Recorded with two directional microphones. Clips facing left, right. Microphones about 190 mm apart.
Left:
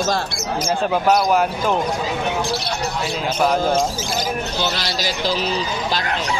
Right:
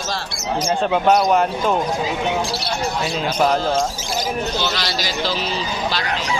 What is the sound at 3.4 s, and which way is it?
Speech, 5° left (ahead or behind).